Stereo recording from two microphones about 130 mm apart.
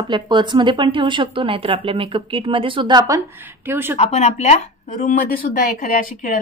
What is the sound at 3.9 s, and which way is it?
Speech, 55° left (ahead or behind).